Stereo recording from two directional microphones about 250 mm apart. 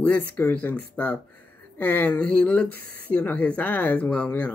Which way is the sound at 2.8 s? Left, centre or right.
Right.